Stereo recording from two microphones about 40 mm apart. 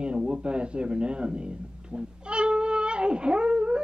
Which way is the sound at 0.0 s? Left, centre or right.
Right.